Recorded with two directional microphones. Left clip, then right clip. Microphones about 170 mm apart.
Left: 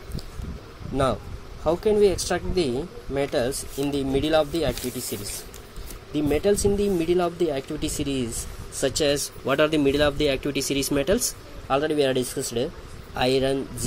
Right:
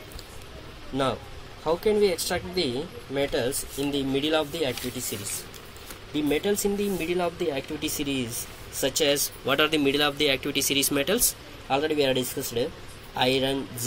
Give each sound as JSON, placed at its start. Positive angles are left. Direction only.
{"t": 1.7, "sound": "speech", "side_deg": 55}
{"t": 6.1, "sound": "speech", "side_deg": 55}